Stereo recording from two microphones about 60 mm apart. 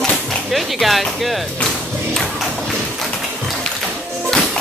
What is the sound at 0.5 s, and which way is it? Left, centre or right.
Speech, centre.